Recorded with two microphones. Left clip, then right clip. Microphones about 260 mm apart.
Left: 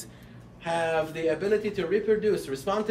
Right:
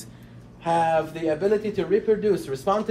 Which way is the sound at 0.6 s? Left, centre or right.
Centre.